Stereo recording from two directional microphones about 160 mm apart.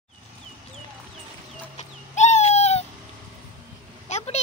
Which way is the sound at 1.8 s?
45° left (ahead or behind).